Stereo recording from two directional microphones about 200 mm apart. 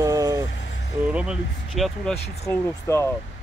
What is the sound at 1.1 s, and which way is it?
Speech, 5° right (ahead or behind).